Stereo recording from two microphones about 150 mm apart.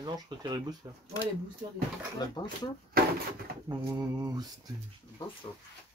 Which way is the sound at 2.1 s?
25° left (ahead or behind).